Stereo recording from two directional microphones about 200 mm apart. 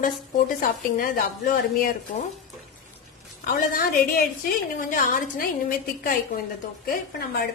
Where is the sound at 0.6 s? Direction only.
45° left (ahead or behind).